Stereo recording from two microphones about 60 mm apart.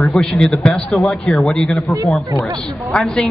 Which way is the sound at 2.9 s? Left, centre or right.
Left.